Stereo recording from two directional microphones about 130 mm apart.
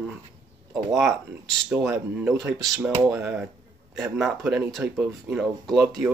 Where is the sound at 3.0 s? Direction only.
10° right (ahead or behind).